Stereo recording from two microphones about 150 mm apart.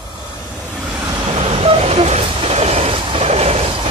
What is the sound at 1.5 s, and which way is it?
Vehicle, 40° right (ahead or behind).